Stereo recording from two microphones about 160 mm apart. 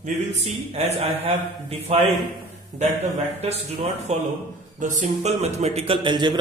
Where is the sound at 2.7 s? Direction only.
50° right (ahead or behind).